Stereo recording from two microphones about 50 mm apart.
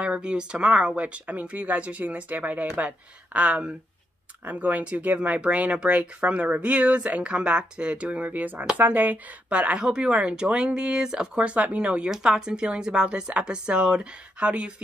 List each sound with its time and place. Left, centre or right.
0.0 s speech: right
12.1 s speech: centre